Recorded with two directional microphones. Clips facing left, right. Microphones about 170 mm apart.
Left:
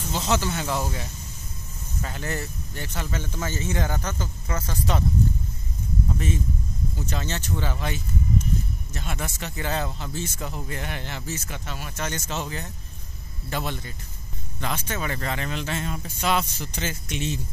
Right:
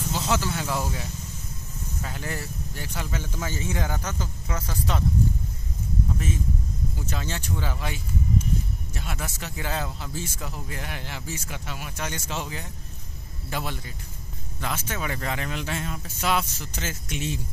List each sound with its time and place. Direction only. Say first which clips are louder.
0.1 s speech: left 2 dB; 5° right (ahead or behind)
2.0 s speech: left 3 dB; 5° right (ahead or behind)
6.1 s speech: left 1 dB; 5° right (ahead or behind)